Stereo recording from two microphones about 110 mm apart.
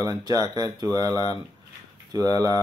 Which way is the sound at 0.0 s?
30° right (ahead or behind).